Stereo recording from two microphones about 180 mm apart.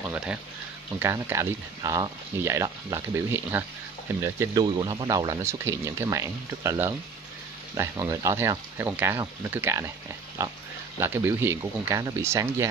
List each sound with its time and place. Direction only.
0.0 s speech: 5° right (ahead or behind)